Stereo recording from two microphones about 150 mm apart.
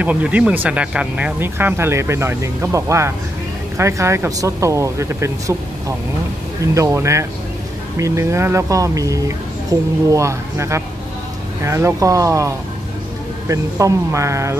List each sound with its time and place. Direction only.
0.0 s speech: 10° right (ahead or behind)